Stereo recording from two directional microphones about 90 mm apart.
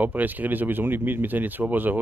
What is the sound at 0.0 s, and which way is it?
Speech, 20° right (ahead or behind).